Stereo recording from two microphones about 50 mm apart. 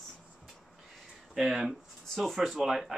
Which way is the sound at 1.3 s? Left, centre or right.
Centre.